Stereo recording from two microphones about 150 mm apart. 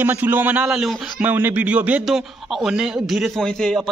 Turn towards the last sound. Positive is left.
turn(degrees=0)  # may be behind; listen again after turning